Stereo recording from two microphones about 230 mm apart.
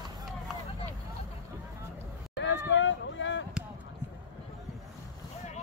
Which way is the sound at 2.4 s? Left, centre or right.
Left.